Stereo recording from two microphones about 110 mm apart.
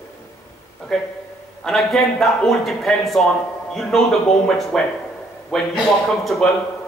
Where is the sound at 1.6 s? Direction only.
Centre (ahead or behind).